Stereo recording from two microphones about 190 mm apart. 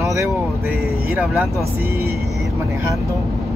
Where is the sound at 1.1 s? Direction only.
Centre (ahead or behind).